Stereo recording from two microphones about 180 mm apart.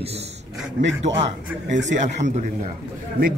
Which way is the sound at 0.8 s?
85° right.